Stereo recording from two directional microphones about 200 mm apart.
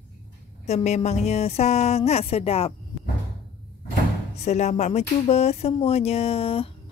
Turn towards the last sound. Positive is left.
turn(degrees=30)  # may be behind; listen again after turning